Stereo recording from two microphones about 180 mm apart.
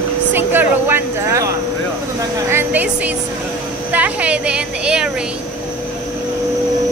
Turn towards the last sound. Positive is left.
turn(degrees=-5)  # may be behind; listen again after turning